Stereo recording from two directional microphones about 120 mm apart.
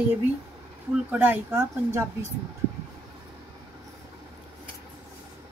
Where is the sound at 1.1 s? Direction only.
10° right (ahead or behind).